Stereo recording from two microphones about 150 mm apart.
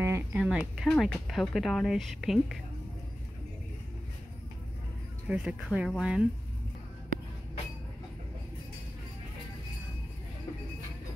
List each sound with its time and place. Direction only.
0.0 s a sound: 15° right (ahead or behind)
0.4 s speech: 5° right (ahead or behind)
5.3 s speech: 5° right (ahead or behind)